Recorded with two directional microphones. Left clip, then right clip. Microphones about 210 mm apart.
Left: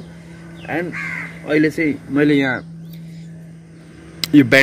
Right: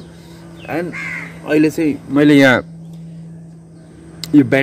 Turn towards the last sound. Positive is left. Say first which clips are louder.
# even
turn(degrees=-5)  # may be behind; listen again after turning